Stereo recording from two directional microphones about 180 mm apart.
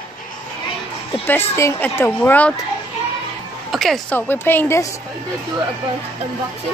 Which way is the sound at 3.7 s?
Centre (ahead or behind).